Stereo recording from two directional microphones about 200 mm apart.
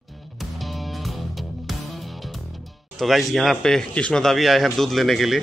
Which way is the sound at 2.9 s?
Centre (ahead or behind).